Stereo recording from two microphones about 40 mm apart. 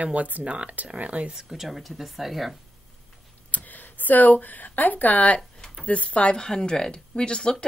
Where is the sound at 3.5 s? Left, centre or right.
Left.